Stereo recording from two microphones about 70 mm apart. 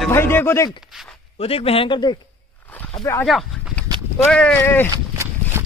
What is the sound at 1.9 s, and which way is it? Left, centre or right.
Speech, left.